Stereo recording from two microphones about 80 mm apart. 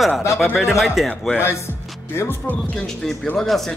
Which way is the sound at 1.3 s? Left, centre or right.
Left.